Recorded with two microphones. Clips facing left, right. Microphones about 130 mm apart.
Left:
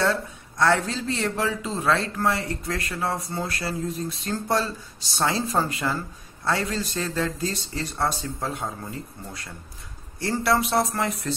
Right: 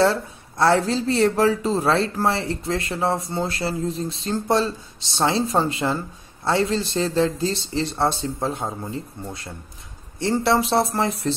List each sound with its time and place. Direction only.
0.0 s speech: 30° right (ahead or behind)